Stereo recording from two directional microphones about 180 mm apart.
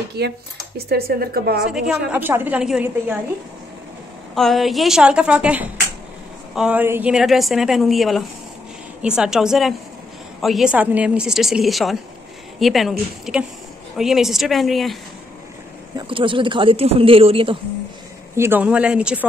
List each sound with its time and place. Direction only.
0.2 s speech: 65° right (ahead or behind)
1.7 s a woman's voice: 5° right (ahead or behind)
4.4 s a woman's voice: centre (ahead or behind)
16.1 s speech: 30° right (ahead or behind)
18.3 s a woman's voice: 15° right (ahead or behind)